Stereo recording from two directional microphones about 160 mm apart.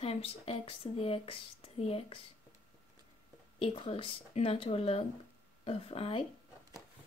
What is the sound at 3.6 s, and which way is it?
Speech, 35° left (ahead or behind).